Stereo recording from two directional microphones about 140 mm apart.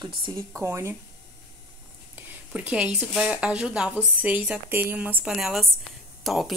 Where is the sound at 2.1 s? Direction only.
10° right (ahead or behind).